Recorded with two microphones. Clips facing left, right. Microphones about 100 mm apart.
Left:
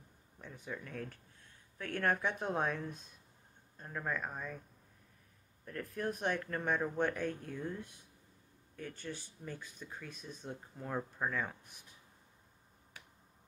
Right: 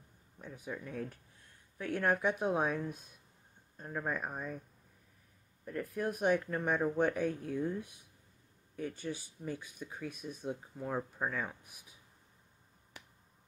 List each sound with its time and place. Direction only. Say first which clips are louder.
0.4 s speech: right 2 dB; 5° right (ahead or behind)
5.7 s speech: right 3 dB; 5° right (ahead or behind)